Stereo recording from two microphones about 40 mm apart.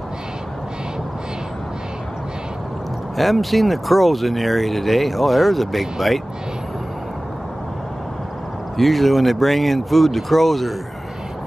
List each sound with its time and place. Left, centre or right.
3.2 s speech: centre
8.7 s speech: centre